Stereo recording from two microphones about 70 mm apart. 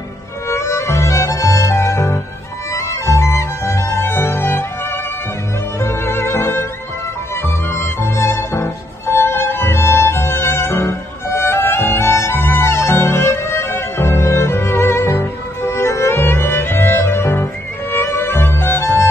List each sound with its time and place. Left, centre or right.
0.5 s music: left
5.8 s music: left